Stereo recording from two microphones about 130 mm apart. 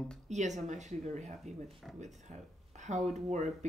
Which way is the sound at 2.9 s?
60° right (ahead or behind).